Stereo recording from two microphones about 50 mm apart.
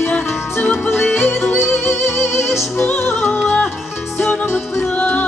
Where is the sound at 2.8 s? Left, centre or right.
Left.